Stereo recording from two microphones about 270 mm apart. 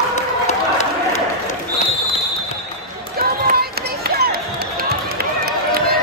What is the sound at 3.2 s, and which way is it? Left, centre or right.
Run, right.